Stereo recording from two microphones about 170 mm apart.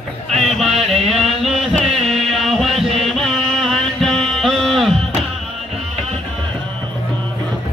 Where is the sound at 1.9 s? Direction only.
35° right (ahead or behind).